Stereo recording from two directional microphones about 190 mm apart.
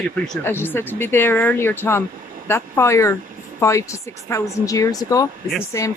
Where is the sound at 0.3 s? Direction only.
10° left (ahead or behind).